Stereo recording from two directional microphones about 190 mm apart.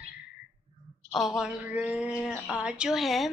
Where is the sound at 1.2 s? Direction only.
Centre (ahead or behind).